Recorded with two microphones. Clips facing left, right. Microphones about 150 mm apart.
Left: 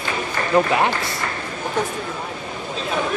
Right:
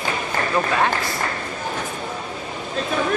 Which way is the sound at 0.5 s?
20° left (ahead or behind).